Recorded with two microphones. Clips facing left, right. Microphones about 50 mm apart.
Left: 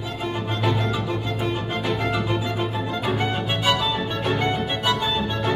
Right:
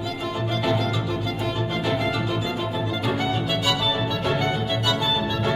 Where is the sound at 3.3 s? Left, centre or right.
Left.